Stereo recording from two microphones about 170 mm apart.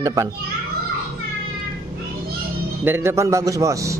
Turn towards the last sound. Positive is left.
turn(degrees=-20)  # may be behind; listen again after turning